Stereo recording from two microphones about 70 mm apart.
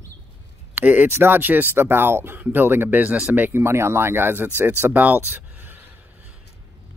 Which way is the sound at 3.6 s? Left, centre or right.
Right.